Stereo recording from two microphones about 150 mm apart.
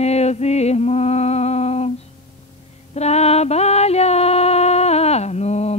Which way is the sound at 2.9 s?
45° left (ahead or behind).